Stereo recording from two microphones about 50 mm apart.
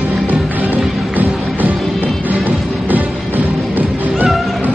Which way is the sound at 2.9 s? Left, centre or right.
Right.